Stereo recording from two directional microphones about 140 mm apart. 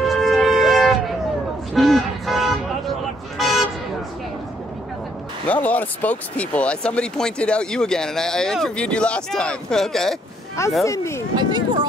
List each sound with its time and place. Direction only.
0.0 s music: centre (ahead or behind)
1.7 s vehicle: centre (ahead or behind)
5.5 s speech: 10° left (ahead or behind)
10.9 s speech: 20° left (ahead or behind)
11.3 s speech: 35° right (ahead or behind)